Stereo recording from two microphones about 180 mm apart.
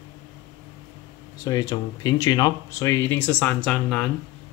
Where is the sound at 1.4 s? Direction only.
20° left (ahead or behind).